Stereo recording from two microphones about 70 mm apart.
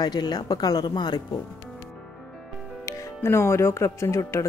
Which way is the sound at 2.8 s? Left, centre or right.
Left.